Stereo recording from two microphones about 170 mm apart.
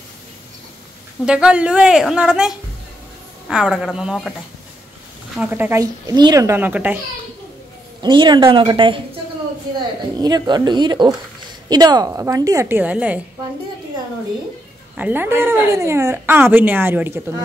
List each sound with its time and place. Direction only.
1.2 s a woman's voice: 5° right (ahead or behind)
5.3 s speech: 10° right (ahead or behind)
8.0 s speech: 25° right (ahead or behind)
10.1 s speech: 25° right (ahead or behind)
15.0 s speech: 10° right (ahead or behind)